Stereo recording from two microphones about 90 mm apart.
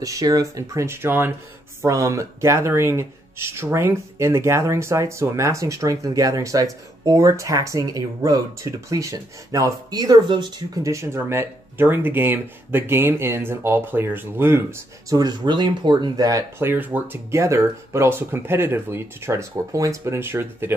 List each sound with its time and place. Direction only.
0.0 s speech: 40° right (ahead or behind); by 10.8 s 55° right (ahead or behind)
10.8 s speech: 35° right (ahead or behind)
15.0 s speech: 50° right (ahead or behind)
16.5 s speech: 25° right (ahead or behind)
17.3 s speech: 30° right (ahead or behind)